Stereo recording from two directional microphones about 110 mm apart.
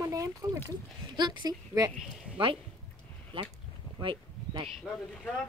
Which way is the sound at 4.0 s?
50° right (ahead or behind).